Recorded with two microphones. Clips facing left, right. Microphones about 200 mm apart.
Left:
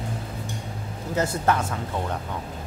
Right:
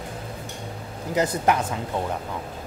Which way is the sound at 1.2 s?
15° right (ahead or behind).